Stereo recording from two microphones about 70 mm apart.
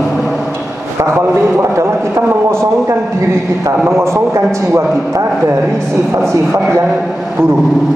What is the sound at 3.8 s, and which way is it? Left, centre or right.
A man's voice, right.